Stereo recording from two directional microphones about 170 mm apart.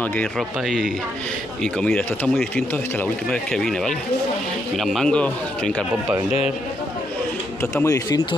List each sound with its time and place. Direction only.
0.0 s speech: 5° left (ahead or behind)
7.7 s speech: 20° left (ahead or behind)